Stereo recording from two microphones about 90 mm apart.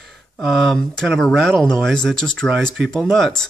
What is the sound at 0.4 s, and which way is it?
Speech, 5° left (ahead or behind).